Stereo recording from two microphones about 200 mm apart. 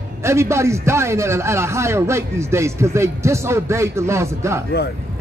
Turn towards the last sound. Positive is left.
turn(degrees=-15)  # may be behind; listen again after turning